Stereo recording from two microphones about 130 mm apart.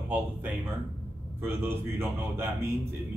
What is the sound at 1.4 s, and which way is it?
Speech, 15° right (ahead or behind).